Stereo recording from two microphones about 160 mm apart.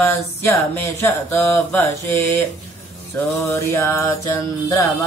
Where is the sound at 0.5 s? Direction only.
15° left (ahead or behind).